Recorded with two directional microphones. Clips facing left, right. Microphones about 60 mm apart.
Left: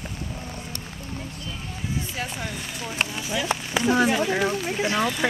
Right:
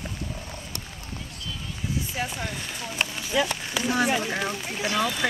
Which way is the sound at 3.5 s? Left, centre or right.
Left.